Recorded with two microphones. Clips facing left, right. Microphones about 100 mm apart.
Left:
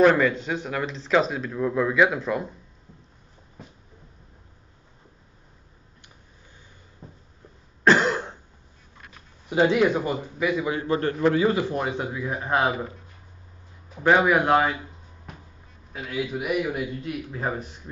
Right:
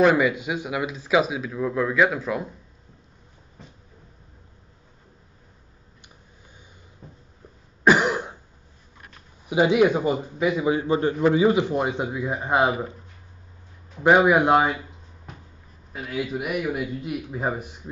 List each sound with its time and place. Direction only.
0.0 s speech: 10° right (ahead or behind)
7.0 s a sound: centre (ahead or behind)
7.8 s cough: 10° right (ahead or behind)
9.5 s a man's voice: 15° right (ahead or behind)
14.0 s a man's voice: 15° right (ahead or behind)
15.9 s speech: centre (ahead or behind)
17.0 s a man's voice: 10° right (ahead or behind)